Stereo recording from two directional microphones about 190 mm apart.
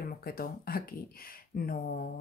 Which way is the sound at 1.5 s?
50° left (ahead or behind).